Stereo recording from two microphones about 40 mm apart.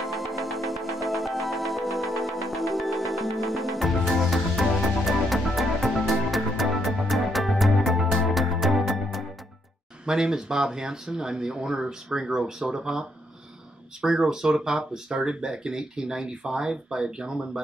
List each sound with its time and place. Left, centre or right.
0.0 s music: centre
10.0 s speech: centre
14.0 s speech: centre